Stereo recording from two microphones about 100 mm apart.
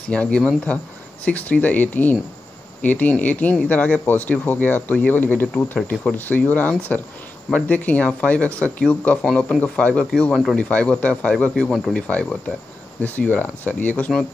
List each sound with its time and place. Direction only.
0.1 s speech: 10° left (ahead or behind)
5.8 s speech: 5° left (ahead or behind)
9.6 s speech: 15° left (ahead or behind)
10.3 s speech: centre (ahead or behind)
10.6 s speech: 10° left (ahead or behind)